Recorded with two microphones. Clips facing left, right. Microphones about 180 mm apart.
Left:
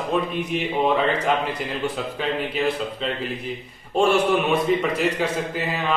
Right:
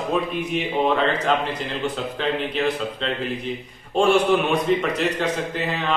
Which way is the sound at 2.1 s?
5° left (ahead or behind).